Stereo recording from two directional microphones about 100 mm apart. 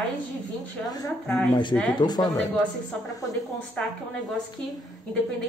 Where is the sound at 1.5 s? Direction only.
50° left (ahead or behind).